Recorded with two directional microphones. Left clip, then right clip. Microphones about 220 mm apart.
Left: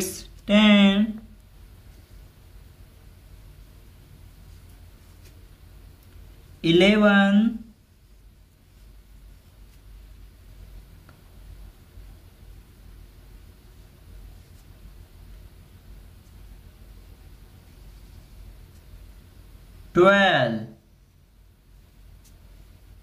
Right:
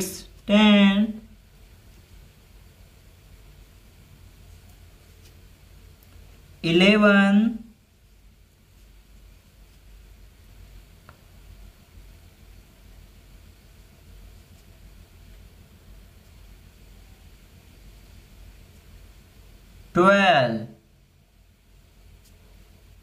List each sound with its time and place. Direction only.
0.0 s a sound: 10° right (ahead or behind)
6.6 s speech: 20° right (ahead or behind)
19.9 s speech: 20° right (ahead or behind)